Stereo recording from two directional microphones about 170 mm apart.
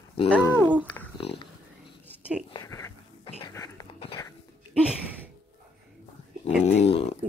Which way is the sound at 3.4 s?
20° left (ahead or behind).